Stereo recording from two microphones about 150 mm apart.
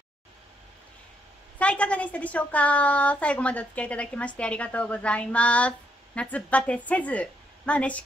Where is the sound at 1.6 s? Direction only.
10° left (ahead or behind).